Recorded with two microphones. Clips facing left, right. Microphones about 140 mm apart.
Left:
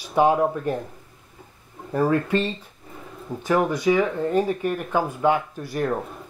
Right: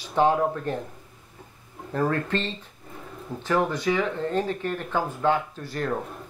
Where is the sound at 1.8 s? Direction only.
10° left (ahead or behind).